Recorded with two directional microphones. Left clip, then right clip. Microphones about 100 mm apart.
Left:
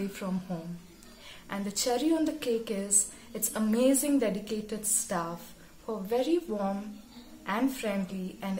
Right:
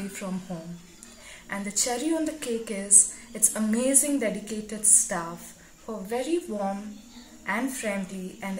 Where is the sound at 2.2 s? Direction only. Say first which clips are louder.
Even; 35° left (ahead or behind).